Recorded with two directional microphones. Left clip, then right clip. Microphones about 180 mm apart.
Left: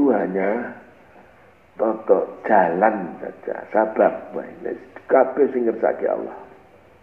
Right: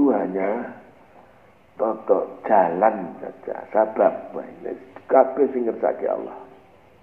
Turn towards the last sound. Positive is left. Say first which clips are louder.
# left 2 dB
turn(degrees=25)  # may be behind; listen again after turning